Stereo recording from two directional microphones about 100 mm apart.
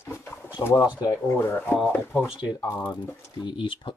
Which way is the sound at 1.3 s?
25° left (ahead or behind).